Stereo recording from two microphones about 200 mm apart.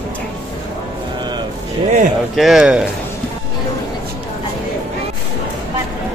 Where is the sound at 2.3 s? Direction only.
Centre (ahead or behind).